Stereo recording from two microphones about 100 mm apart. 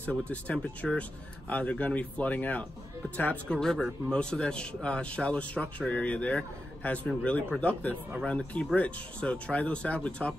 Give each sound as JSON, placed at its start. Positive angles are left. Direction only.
{"t": 0.2, "sound": "a man's voice", "side_deg": 10}